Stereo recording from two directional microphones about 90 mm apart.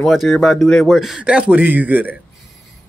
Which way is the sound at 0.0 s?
Centre (ahead or behind).